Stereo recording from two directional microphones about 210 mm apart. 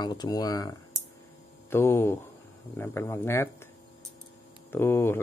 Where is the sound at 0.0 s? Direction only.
20° left (ahead or behind).